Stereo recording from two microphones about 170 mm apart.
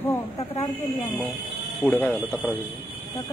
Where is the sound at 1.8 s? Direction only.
10° left (ahead or behind).